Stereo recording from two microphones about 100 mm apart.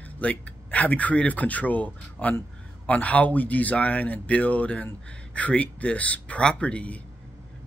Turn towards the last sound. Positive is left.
turn(degrees=15)  # may be behind; listen again after turning